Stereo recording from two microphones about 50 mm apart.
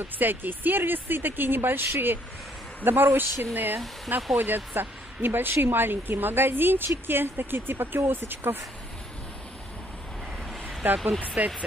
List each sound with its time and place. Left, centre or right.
0.0 s speech: right
10.8 s speech: right